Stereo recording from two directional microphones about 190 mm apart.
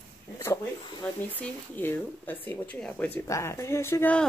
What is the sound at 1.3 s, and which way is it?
Speech, 10° left (ahead or behind).